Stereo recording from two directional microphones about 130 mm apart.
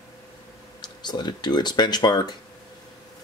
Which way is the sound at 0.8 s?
35° left (ahead or behind).